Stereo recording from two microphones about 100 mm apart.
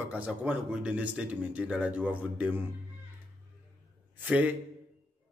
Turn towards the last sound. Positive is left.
turn(degrees=-15)  # may be behind; listen again after turning